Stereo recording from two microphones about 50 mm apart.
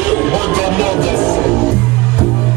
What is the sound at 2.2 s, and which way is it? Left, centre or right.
Music, right.